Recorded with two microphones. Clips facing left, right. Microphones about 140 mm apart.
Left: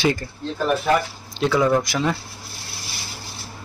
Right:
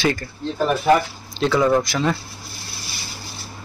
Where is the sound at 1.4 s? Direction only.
10° left (ahead or behind).